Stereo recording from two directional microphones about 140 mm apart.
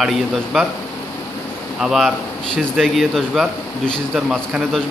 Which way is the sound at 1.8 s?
Centre (ahead or behind).